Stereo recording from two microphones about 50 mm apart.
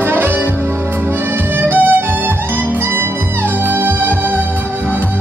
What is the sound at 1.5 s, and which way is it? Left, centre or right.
Music, right.